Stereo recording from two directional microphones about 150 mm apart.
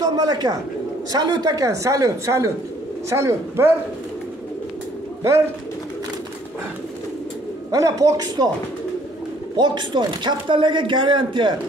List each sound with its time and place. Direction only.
0.0 s speech: 25° right (ahead or behind)
7.7 s speech: 20° right (ahead or behind)
9.6 s speech: 30° right (ahead or behind)